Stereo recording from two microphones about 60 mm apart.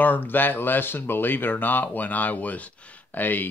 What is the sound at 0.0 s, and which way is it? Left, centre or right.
Speech, left.